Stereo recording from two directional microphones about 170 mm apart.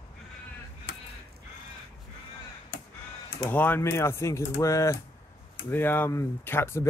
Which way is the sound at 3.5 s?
10° left (ahead or behind).